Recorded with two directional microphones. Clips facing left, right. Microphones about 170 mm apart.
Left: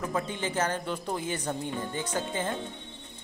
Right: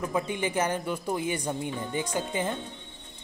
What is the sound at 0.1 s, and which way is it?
Speech, 15° right (ahead or behind).